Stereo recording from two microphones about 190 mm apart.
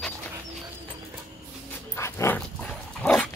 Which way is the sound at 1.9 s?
15° left (ahead or behind).